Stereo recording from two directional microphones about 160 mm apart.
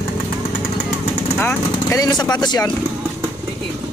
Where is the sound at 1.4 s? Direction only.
15° left (ahead or behind).